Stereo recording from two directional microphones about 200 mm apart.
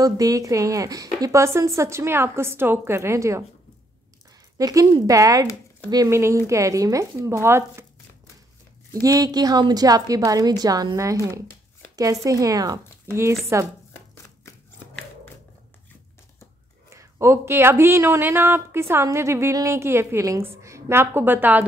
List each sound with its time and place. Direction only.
0.0 s speech: 15° right (ahead or behind)
4.6 s speech: 15° right (ahead or behind)
9.0 s a woman's voice: 15° right (ahead or behind)
16.9 s speech: 15° right (ahead or behind)